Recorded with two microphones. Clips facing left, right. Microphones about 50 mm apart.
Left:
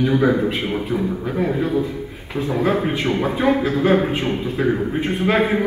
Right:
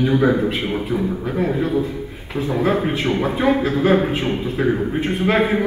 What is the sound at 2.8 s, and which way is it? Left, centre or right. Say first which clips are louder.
Speech: even; centre.